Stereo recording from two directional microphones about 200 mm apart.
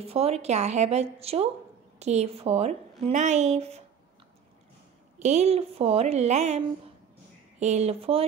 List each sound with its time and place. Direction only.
0.0 s speech: 30° right (ahead or behind)
5.2 s speech: 35° right (ahead or behind)